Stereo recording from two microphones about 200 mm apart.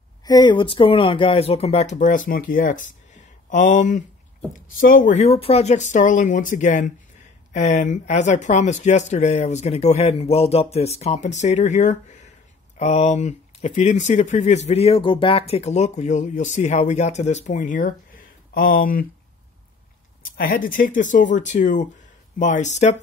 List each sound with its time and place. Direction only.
0.2 s speech: 20° left (ahead or behind); by 19.0 s 45° left (ahead or behind)
20.3 s speech: 45° left (ahead or behind)